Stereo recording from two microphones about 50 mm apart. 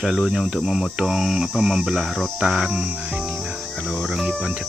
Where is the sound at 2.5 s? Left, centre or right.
Centre.